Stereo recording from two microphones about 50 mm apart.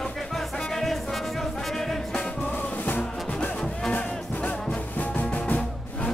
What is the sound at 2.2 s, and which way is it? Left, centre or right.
Music, left.